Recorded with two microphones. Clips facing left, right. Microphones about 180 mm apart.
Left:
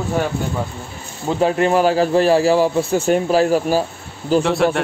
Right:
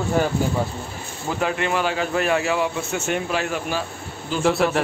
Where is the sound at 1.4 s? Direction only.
35° left (ahead or behind).